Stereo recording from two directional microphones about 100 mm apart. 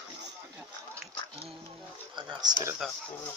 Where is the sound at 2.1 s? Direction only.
50° right (ahead or behind).